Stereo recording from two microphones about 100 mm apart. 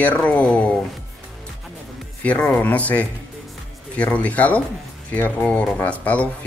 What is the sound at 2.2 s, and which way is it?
Speech, 15° left (ahead or behind).